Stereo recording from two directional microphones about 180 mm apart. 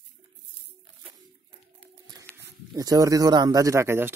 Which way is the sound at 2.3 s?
5° left (ahead or behind).